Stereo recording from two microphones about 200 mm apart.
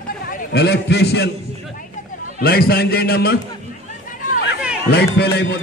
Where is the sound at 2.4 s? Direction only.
50° left (ahead or behind).